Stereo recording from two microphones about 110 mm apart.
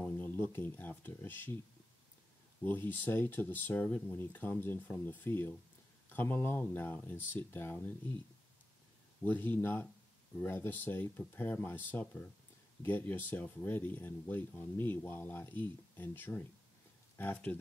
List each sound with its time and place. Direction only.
0.0 s speech: 15° left (ahead or behind)
2.6 s speech: 20° left (ahead or behind)
9.2 s speech: 15° left (ahead or behind)